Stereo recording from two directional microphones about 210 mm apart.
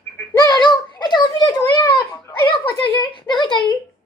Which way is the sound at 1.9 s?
20° left (ahead or behind).